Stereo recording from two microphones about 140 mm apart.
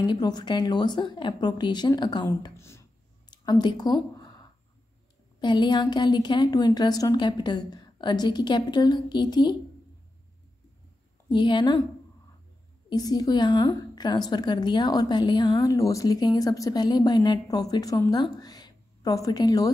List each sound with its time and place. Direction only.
0.0 s a woman's voice: 30° left (ahead or behind)
2.5 s a woman's voice: 20° left (ahead or behind)
3.3 s a sound: 30° left (ahead or behind)
5.4 s a woman's voice: 35° left (ahead or behind)
11.2 s a woman's voice: 35° left (ahead or behind)
12.9 s a woman's voice: 30° left (ahead or behind)